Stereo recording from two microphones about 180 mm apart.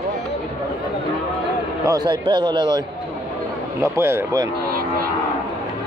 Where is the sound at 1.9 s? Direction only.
25° right (ahead or behind).